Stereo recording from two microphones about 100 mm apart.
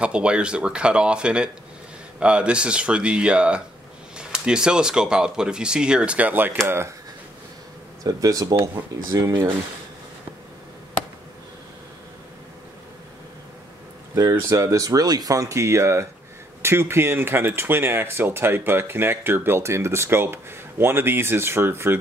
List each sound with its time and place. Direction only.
0.0 s speech: 10° right (ahead or behind)
8.0 s speech: 35° right (ahead or behind)
14.5 s speech: 35° right (ahead or behind)